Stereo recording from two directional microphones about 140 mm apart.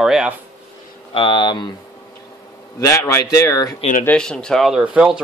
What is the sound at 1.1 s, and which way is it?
Speech, 35° left (ahead or behind).